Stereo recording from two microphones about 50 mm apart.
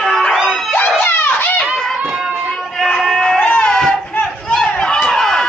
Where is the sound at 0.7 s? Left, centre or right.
Left.